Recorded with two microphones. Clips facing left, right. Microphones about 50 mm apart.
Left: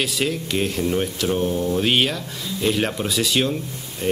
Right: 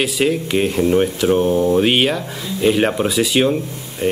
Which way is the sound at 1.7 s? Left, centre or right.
Centre.